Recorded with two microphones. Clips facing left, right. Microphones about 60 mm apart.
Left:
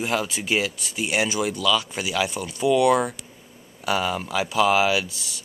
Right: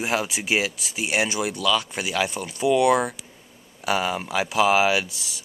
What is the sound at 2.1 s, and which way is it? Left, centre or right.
Speech, right.